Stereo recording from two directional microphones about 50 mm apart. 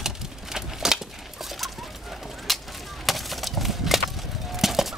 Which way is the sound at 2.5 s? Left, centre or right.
Centre.